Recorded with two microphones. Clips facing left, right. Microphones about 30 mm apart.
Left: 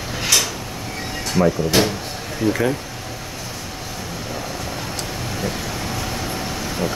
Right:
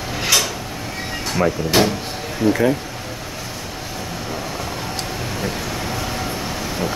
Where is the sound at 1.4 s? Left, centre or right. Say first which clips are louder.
Left 2 dB; right.